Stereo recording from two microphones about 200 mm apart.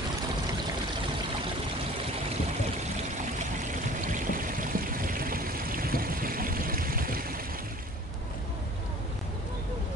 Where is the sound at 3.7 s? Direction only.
40° right (ahead or behind).